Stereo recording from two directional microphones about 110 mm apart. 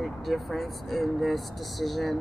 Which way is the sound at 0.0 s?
Centre (ahead or behind).